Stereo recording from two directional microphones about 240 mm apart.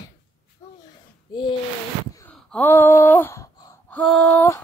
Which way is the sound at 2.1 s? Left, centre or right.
Centre.